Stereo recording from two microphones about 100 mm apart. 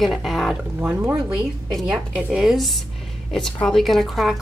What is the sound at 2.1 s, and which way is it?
Speech, 5° right (ahead or behind).